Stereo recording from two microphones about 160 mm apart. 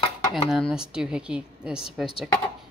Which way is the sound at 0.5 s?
5° right (ahead or behind).